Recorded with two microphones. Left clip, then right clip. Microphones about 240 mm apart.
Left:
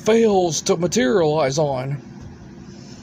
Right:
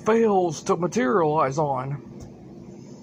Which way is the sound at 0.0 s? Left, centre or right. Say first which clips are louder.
Left 4 dB; centre.